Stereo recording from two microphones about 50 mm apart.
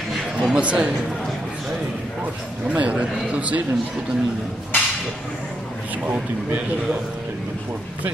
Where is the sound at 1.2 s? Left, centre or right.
Centre.